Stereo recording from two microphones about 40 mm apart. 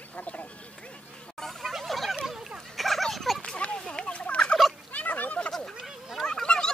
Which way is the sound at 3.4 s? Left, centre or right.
Left.